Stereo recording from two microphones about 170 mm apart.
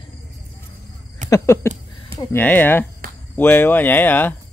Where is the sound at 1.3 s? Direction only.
15° left (ahead or behind).